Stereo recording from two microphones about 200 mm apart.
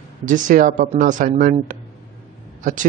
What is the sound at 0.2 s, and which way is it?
Speech, 40° right (ahead or behind).